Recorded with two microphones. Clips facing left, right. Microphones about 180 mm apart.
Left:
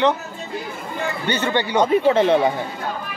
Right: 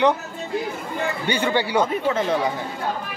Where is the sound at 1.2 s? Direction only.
10° right (ahead or behind).